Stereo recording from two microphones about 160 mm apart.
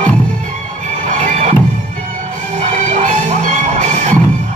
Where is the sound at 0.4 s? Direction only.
55° right (ahead or behind).